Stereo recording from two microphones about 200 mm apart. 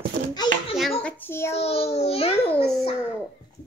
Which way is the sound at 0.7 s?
5° left (ahead or behind).